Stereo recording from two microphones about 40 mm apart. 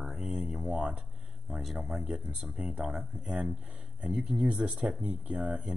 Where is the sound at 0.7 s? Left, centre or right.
Right.